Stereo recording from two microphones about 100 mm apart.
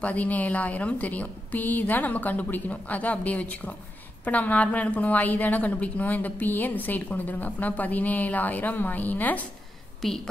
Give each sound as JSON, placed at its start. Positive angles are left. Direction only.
{"t": 0.0, "sound": "a woman's voice", "side_deg": 15}